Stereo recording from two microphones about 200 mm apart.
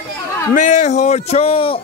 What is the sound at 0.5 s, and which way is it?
Speech, 35° left (ahead or behind).